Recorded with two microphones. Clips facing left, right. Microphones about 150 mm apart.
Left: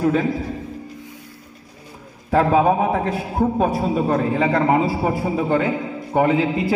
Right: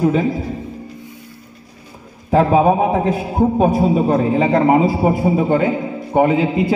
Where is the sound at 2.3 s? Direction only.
15° right (ahead or behind).